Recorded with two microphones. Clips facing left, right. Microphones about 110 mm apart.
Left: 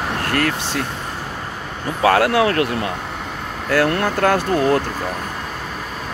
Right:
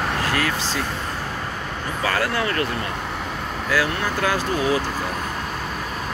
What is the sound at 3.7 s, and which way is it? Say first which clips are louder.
Speech: left 6 dB; 65° left (ahead or behind).